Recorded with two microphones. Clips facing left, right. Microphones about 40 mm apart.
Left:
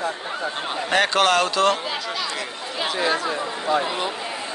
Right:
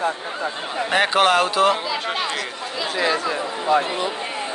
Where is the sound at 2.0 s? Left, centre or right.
Right.